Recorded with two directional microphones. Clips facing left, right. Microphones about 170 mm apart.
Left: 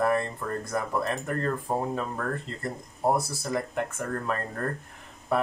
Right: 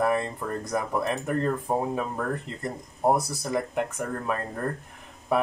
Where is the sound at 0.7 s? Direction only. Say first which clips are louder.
Right 2 dB; 15° right (ahead or behind).